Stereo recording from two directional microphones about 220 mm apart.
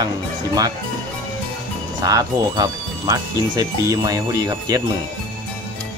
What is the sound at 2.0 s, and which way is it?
Speech, 15° right (ahead or behind).